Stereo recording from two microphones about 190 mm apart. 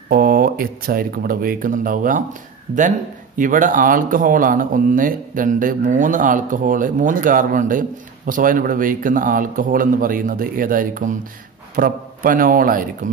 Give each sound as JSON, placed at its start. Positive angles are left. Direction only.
{"t": 0.1, "sound": "speech", "side_deg": -50}
{"t": 3.3, "sound": "speech", "side_deg": -45}